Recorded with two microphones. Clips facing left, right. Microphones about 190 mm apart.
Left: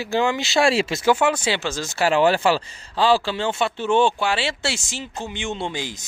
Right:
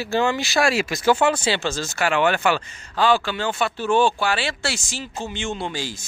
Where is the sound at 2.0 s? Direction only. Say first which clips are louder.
Left 3 dB; 35° left (ahead or behind).